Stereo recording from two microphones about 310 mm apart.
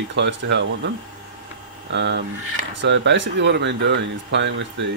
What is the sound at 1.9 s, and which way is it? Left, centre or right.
Speech, right.